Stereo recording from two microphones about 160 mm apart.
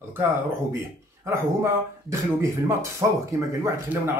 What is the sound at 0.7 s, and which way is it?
Speech, 15° right (ahead or behind).